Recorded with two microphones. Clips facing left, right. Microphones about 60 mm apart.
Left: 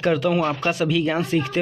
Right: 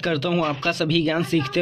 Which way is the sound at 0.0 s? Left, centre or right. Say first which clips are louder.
Left 2 dB; centre.